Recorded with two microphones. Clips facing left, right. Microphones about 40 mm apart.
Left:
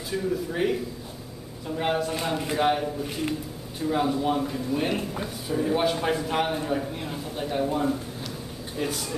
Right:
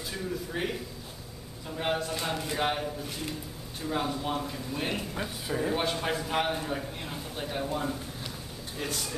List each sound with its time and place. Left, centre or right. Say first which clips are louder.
0.1 s a man's voice: left 8 dB; centre
3.0 s speech: left 7 dB; centre
3.8 s a man's voice: left 7 dB; centre